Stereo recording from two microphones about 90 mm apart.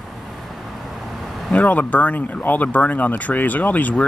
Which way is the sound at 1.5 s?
15° left (ahead or behind).